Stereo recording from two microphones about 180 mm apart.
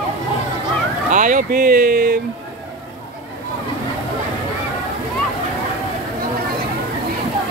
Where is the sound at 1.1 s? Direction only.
45° right (ahead or behind).